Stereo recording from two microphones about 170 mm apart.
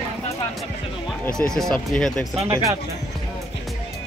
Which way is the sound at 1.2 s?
5° left (ahead or behind).